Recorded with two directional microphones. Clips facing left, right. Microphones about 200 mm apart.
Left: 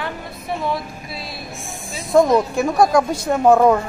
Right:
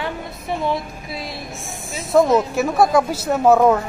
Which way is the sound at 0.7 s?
20° right (ahead or behind).